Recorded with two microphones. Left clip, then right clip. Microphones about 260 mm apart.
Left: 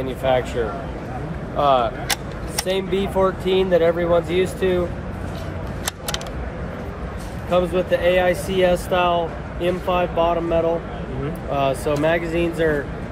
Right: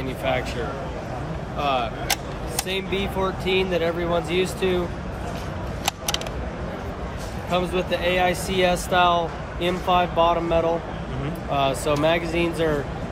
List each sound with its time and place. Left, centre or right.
1.6 s speech: centre
7.5 s speech: centre